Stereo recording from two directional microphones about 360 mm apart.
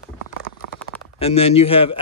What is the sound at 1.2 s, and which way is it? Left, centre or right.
Speech, centre.